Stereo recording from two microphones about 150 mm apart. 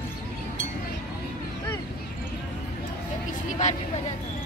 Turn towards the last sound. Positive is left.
turn(degrees=55)  # may be behind; listen again after turning